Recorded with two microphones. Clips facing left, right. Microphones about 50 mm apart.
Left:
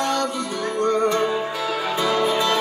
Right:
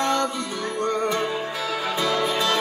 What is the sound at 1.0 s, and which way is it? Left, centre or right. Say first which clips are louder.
Music: left 4 dB; centre.